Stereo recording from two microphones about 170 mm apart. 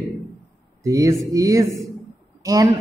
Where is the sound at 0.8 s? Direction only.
20° right (ahead or behind).